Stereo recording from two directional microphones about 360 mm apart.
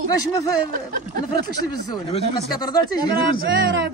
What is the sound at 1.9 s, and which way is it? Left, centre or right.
Speech, centre.